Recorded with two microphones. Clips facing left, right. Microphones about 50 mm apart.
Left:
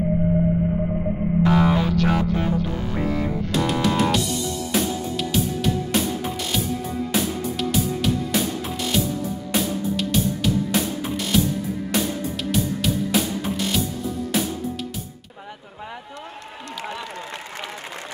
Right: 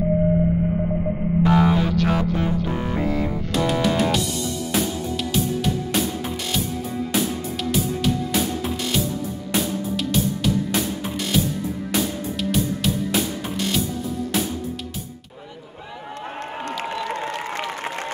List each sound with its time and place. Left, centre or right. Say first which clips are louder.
1.4 s music: right 1 dB; centre
16.9 s applause: right 6 dB; right